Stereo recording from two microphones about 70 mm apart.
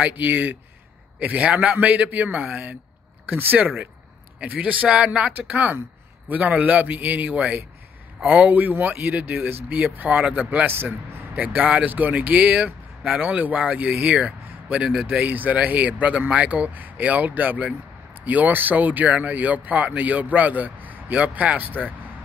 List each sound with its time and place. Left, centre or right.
0.0 s speech: right
11.4 s speech: centre